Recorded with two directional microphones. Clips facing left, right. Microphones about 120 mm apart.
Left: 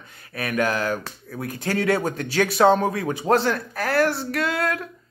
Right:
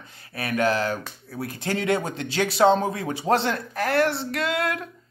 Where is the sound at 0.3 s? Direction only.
30° right (ahead or behind).